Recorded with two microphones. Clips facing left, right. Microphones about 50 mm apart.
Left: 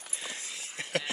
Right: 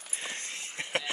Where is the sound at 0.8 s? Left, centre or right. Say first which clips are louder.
Even; right.